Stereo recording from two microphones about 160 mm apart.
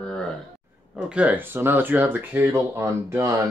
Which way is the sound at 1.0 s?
10° right (ahead or behind).